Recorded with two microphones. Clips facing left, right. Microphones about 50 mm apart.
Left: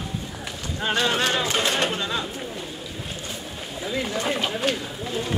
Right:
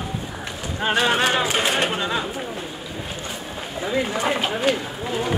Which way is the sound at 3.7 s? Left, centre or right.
Right.